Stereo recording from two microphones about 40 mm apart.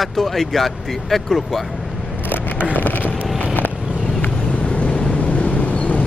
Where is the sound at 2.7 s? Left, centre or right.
Left.